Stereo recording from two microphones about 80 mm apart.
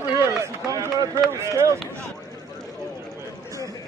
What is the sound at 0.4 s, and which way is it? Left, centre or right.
Run, right.